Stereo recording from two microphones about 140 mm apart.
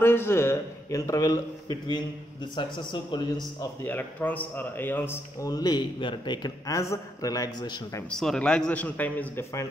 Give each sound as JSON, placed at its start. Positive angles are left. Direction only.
{"t": 0.0, "sound": "a man's voice", "side_deg": 15}
{"t": 3.8, "sound": "a man's voice", "side_deg": 15}
{"t": 8.2, "sound": "a man's voice", "side_deg": 5}